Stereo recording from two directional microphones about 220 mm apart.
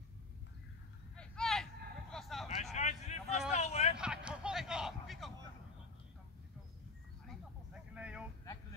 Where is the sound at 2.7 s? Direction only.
30° left (ahead or behind).